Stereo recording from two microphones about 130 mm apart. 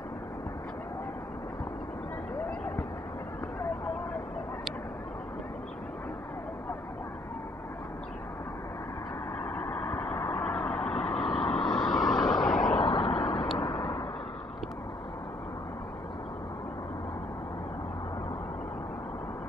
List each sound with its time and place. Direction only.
9.4 s vehicle: 10° left (ahead or behind)
12.8 s vehicle: 45° left (ahead or behind)